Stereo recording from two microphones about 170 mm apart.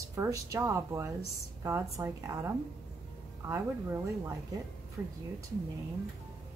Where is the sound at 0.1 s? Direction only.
15° right (ahead or behind).